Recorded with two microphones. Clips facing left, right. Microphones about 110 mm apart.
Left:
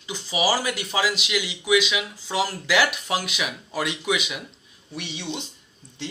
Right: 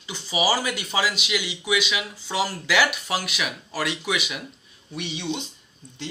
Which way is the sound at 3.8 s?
10° left (ahead or behind).